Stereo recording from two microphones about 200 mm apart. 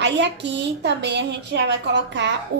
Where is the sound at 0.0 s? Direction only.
60° right (ahead or behind).